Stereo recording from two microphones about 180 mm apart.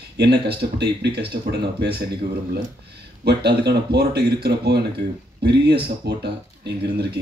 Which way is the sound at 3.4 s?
65° right (ahead or behind).